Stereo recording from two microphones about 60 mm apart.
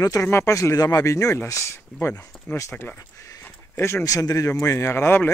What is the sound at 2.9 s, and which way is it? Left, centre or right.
Speech, left.